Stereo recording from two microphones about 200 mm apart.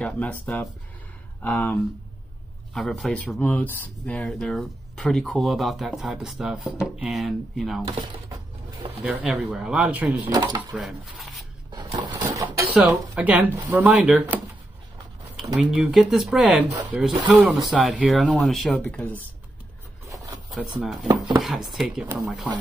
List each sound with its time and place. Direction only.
0.0 s speech: 10° left (ahead or behind)
7.8 s speech: 20° right (ahead or behind)
9.0 s speech: 5° right (ahead or behind)
10.2 s speech: 20° right (ahead or behind)
10.7 s speech: centre (ahead or behind)
11.7 s dishes: 20° right (ahead or behind)
12.2 s a sound: 15° right (ahead or behind)
12.7 s speech: 5° right (ahead or behind)
15.5 s speech: 5° right (ahead or behind)
20.8 s speech: centre (ahead or behind)